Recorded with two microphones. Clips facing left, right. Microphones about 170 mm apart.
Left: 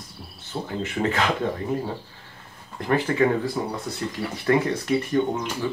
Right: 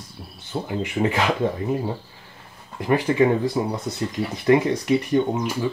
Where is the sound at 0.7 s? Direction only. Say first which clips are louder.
Right 2 dB; 15° right (ahead or behind).